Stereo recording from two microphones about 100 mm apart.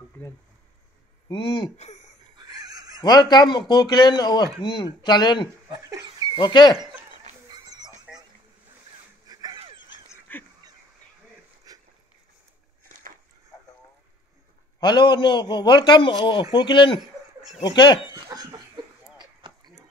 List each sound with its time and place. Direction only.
1.3 s a man's voice: 50° left (ahead or behind)
2.3 s a sound: 40° right (ahead or behind)
3.0 s a man's voice: 45° left (ahead or behind)
4.6 s a man's voice: 55° left (ahead or behind)
6.0 s dog: 50° right (ahead or behind)
6.3 s a man's voice: 50° left (ahead or behind)
8.1 s duck: 10° right (ahead or behind)
9.3 s a sound: 40° right (ahead or behind)
10.3 s goose: 20° left (ahead or behind)
11.7 s dog: 40° right (ahead or behind)
14.8 s a man's voice: 50° left (ahead or behind)
18.1 s laughter: 45° right (ahead or behind)
19.1 s a sound: 45° right (ahead or behind)